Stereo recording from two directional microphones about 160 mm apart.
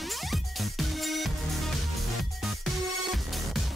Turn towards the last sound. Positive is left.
turn(degrees=0)  # may be behind; listen again after turning